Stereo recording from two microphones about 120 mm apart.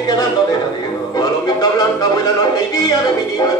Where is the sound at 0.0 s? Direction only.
35° left (ahead or behind).